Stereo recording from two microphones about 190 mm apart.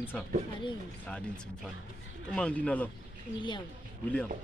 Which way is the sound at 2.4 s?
5° left (ahead or behind).